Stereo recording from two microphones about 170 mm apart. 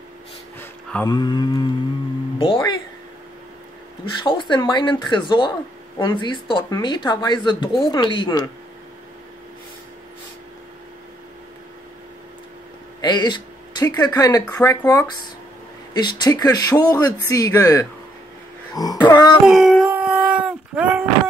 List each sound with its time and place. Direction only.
0.6 s a sound: 10° left (ahead or behind)
1.0 s speech: 25° left (ahead or behind)
4.2 s speech: 30° left (ahead or behind)
13.0 s a sound: 25° left (ahead or behind)
14.0 s speech: 20° left (ahead or behind)
19.4 s dog: centre (ahead or behind)